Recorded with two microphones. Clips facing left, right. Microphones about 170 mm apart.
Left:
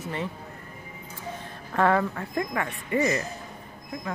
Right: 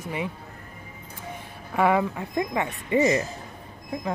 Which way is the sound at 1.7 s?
10° right (ahead or behind).